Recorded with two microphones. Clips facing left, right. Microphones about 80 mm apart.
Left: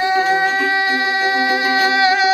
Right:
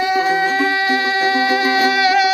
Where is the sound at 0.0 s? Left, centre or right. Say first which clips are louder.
Left 1 dB; left.